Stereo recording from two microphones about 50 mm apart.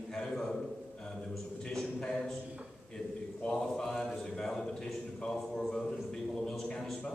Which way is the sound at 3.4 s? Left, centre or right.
Centre.